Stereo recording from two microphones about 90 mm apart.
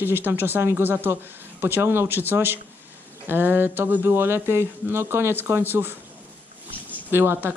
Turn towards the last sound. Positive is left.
turn(degrees=-25)  # may be behind; listen again after turning